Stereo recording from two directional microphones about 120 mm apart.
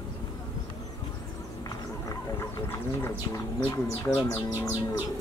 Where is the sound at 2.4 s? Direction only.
20° left (ahead or behind).